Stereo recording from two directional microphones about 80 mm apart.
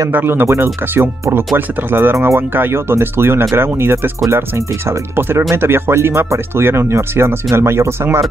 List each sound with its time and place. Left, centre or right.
0.1 s speech: right